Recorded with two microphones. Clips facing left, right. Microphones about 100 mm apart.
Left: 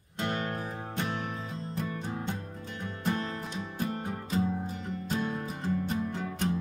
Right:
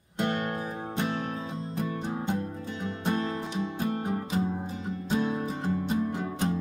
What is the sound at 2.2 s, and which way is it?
Music, 15° right (ahead or behind).